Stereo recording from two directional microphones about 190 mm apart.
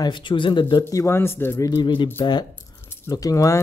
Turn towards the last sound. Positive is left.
turn(degrees=15)  # may be behind; listen again after turning